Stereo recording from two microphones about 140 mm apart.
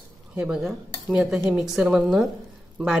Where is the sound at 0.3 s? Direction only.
5° right (ahead or behind).